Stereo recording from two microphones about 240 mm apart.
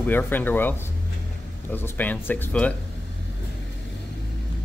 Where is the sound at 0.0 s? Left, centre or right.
Centre.